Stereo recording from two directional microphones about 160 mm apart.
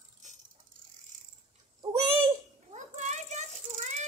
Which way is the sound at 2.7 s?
45° right (ahead or behind).